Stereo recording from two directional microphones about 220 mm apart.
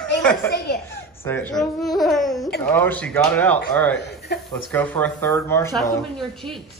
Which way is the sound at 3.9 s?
50° left (ahead or behind).